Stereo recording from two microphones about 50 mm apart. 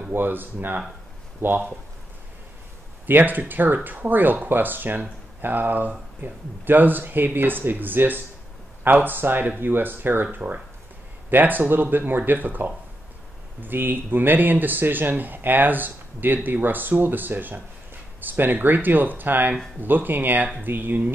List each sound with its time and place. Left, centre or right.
0.1 s speech: right
3.1 s speech: right
10.2 s speech: right